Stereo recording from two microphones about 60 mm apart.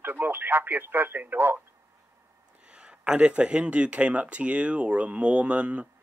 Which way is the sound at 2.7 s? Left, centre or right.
Centre.